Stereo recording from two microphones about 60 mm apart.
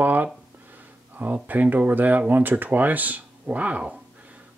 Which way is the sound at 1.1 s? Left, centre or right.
Right.